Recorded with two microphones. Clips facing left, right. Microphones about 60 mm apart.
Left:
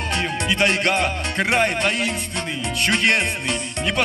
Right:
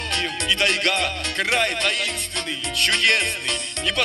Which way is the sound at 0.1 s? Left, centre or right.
Centre.